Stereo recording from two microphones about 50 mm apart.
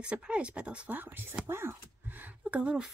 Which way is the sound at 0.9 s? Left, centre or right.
Right.